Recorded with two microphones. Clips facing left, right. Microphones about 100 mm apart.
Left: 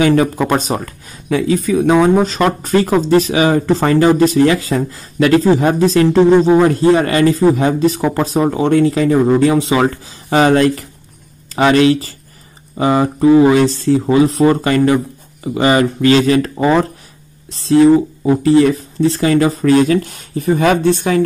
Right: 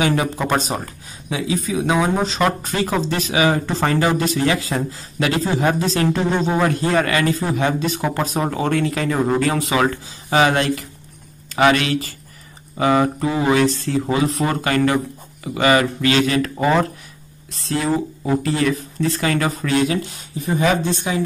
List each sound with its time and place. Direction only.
0.0 s speech: 40° left (ahead or behind)
0.7 s speech: 50° left (ahead or behind); by 9.8 s 25° left (ahead or behind)
9.8 s speech: 40° left (ahead or behind)
13.6 s speech: 35° left (ahead or behind)
16.5 s speech: 25° left (ahead or behind); by 21.2 s 60° left (ahead or behind)